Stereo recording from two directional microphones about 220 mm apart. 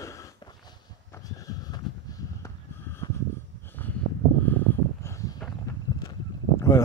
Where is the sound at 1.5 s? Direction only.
15° left (ahead or behind).